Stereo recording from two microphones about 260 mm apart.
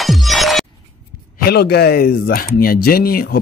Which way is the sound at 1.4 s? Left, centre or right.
Left.